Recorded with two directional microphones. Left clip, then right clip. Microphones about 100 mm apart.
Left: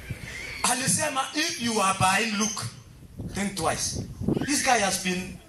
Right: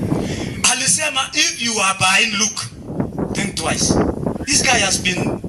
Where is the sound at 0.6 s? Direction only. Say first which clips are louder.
Right 8 dB; 20° right (ahead or behind).